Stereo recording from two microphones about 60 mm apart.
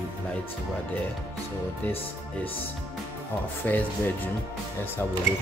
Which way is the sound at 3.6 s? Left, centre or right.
Left.